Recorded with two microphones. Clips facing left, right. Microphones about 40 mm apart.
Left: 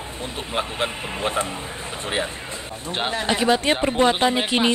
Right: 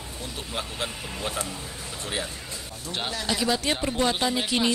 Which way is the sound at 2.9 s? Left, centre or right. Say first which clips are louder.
Left 6 dB; left.